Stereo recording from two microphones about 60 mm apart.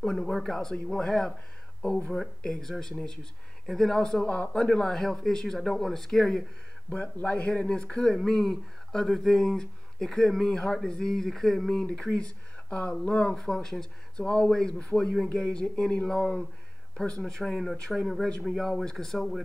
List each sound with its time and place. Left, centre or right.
0.0 s speech: centre
4.9 s speech: centre
6.9 s speech: left; by 11.8 s centre
11.8 s speech: centre
13.3 s speech: centre